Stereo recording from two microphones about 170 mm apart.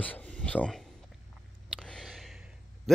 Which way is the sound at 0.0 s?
10° left (ahead or behind).